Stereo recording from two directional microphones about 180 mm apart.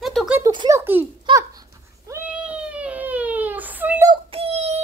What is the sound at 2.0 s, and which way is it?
Cat, 10° right (ahead or behind).